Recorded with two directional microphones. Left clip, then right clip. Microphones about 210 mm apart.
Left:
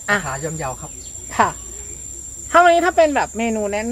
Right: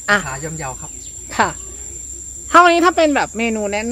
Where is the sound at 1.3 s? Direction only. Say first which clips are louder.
Even; 40° right (ahead or behind).